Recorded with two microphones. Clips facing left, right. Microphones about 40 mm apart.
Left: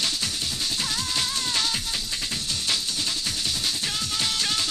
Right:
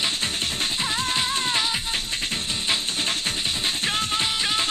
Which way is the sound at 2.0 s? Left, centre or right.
Right.